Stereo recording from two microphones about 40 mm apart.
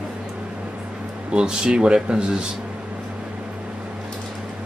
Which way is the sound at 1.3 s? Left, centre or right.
Right.